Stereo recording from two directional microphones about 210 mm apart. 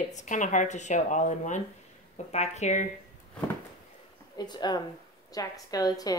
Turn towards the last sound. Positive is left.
turn(degrees=15)  # may be behind; listen again after turning